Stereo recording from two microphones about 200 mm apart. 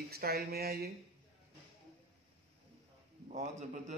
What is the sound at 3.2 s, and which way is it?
Speech, 40° right (ahead or behind).